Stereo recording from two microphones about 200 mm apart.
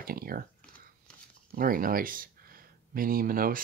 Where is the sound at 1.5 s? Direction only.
45° right (ahead or behind).